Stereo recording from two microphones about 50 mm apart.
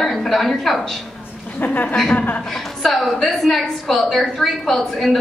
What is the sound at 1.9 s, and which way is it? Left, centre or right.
Speech, centre.